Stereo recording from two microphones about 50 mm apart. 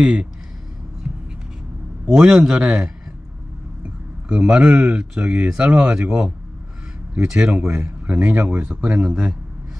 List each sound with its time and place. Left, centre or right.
0.0 s a man's voice: centre
2.0 s a man's voice: centre
3.8 s a sound: right
4.5 s speech: right
7.7 s speech: right
8.2 s speech: right
8.9 s speech: right